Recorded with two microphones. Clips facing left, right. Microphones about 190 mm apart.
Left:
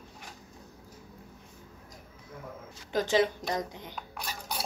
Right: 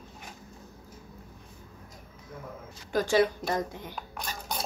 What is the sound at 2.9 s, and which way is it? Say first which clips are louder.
Speech: right 2 dB; 20° left (ahead or behind).